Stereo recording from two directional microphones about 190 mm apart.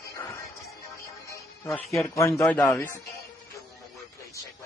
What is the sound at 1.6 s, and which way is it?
A man's voice, 5° left (ahead or behind).